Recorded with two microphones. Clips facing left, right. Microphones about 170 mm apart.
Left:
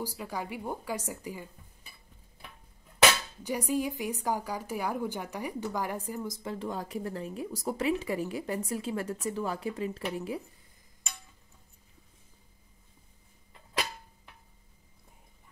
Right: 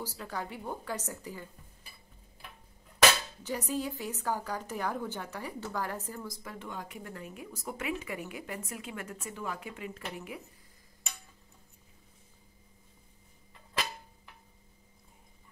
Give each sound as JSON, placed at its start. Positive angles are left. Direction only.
{"t": 0.0, "sound": "a woman's voice", "side_deg": 10}
{"t": 3.0, "sound": "speech", "side_deg": 10}